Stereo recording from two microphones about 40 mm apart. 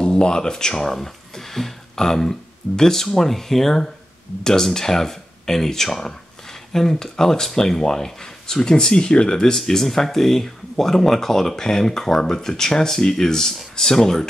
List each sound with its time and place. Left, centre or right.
0.0 s speech: centre
9.6 s speech: centre